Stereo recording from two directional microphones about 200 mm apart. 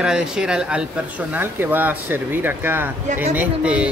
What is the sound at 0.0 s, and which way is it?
Speech, 5° right (ahead or behind).